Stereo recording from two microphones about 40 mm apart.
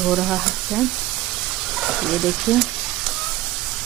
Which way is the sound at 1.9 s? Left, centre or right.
Centre.